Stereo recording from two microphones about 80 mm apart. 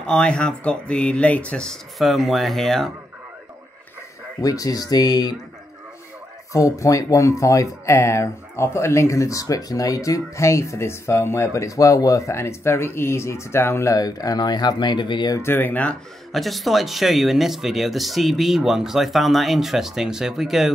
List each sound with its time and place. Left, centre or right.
0.0 s speech: centre
4.4 s speech: left
6.5 s speech: left
13.9 s speech: left
15.4 s speech: left
16.3 s speech: centre